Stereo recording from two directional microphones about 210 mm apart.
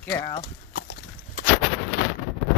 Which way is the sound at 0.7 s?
55° left (ahead or behind).